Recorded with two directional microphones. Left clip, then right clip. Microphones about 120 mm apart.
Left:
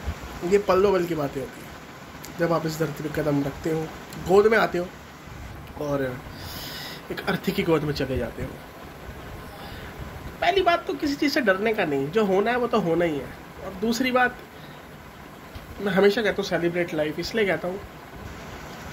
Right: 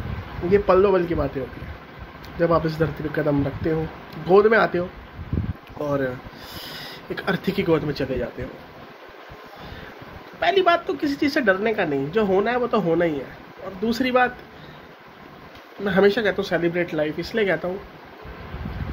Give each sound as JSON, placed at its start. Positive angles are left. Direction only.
{"t": 0.5, "sound": "a woman's voice", "side_deg": -25}
{"t": 2.4, "sound": "speech", "side_deg": -40}
{"t": 5.8, "sound": "speech", "side_deg": -45}
{"t": 10.4, "sound": "a woman's voice", "side_deg": -40}
{"t": 15.8, "sound": "a woman's voice", "side_deg": -30}
{"t": 16.3, "sound": "speech", "side_deg": -40}